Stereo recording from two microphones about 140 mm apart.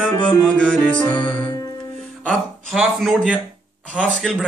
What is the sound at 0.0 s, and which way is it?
Speech, 5° left (ahead or behind).